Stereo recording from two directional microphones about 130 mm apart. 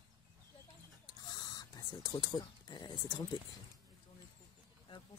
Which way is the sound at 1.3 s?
30° left (ahead or behind).